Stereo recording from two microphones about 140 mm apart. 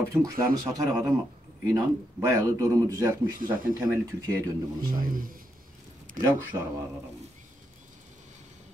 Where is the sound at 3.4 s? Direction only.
80° right.